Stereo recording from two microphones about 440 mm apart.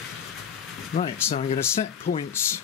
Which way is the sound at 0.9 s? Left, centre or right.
Centre.